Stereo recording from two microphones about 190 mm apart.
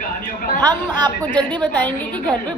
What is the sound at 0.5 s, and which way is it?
Speech, 20° right (ahead or behind).